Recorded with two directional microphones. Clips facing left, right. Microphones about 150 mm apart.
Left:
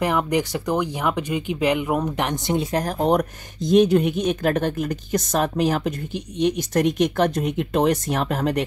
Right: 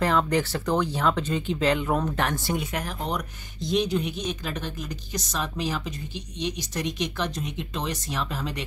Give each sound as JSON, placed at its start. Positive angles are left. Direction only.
{"t": 0.0, "sound": "speech", "side_deg": 15}
{"t": 2.6, "sound": "speech", "side_deg": 40}